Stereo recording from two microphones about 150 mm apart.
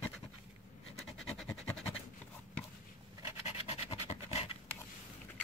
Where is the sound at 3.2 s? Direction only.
40° left (ahead or behind).